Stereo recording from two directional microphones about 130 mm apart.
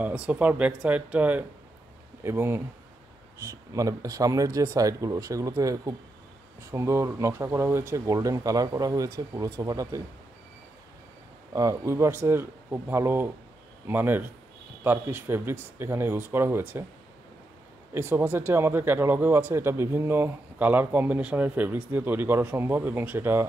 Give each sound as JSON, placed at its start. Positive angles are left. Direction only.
{"t": 0.0, "sound": "speech", "side_deg": -10}
{"t": 11.5, "sound": "speech", "side_deg": -25}
{"t": 17.9, "sound": "speech", "side_deg": -15}